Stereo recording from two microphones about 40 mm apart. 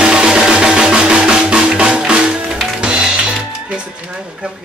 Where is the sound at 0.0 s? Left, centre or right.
Right.